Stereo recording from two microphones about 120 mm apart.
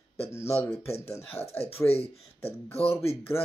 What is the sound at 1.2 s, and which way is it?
Speech, 55° left (ahead or behind).